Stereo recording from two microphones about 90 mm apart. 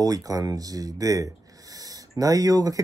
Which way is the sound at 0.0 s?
40° right (ahead or behind).